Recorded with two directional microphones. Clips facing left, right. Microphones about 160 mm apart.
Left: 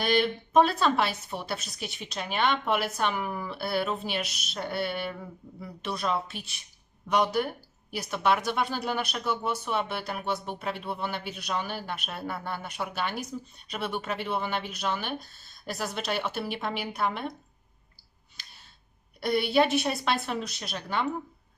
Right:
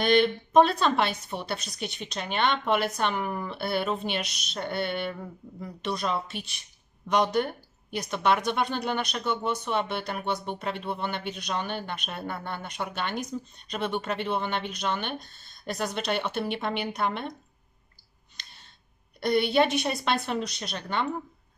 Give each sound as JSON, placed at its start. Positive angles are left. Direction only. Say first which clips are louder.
{"t": 0.0, "sound": "speech", "louder": "right 4 dB", "side_deg": 5}
{"t": 18.3, "sound": "a sound", "louder": "right 1 dB", "side_deg": 5}
{"t": 19.1, "sound": "speech", "louder": "right 1 dB", "side_deg": 5}